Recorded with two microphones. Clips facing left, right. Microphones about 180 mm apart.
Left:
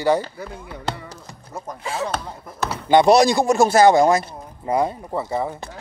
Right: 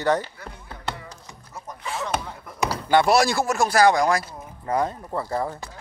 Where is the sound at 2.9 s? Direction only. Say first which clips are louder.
Left 5 dB; 20° left (ahead or behind).